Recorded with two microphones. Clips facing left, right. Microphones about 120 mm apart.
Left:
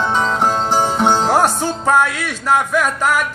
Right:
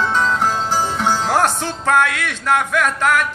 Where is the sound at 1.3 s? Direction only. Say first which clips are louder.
Left 2 dB; 10° left (ahead or behind).